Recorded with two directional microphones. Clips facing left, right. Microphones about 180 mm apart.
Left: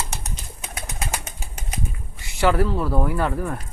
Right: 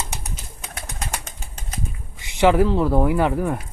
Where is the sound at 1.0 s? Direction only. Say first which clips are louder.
Left 1 dB; 5° left (ahead or behind).